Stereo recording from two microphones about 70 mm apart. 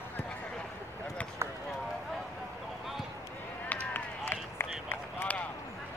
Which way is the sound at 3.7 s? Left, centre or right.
Left.